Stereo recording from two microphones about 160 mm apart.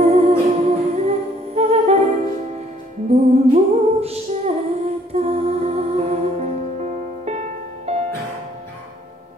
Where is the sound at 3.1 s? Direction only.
40° right (ahead or behind).